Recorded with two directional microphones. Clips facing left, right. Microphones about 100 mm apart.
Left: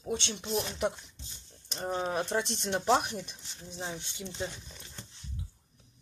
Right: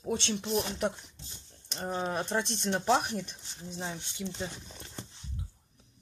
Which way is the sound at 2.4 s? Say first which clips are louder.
Right 1 dB; 5° left (ahead or behind).